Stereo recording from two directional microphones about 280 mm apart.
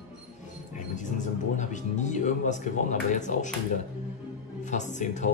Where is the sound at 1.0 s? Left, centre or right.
Left.